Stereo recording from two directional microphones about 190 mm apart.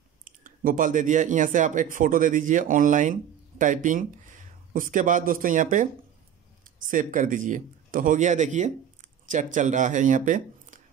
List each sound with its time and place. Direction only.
0.2 s speech: 45° right (ahead or behind)
6.9 s a man's voice: 45° right (ahead or behind)